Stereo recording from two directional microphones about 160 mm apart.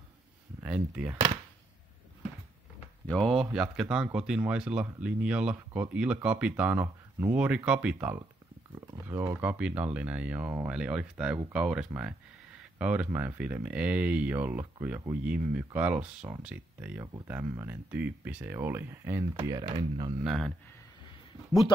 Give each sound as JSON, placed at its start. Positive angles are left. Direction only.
{"t": 0.6, "sound": "speech", "side_deg": -10}
{"t": 3.1, "sound": "speech", "side_deg": 0}
{"t": 19.3, "sound": "speech", "side_deg": -25}
{"t": 20.2, "sound": "speech", "side_deg": 0}